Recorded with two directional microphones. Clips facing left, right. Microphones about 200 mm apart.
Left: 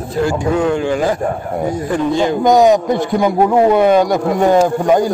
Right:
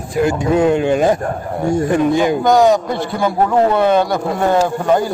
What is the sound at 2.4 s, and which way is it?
A man's voice, 20° left (ahead or behind).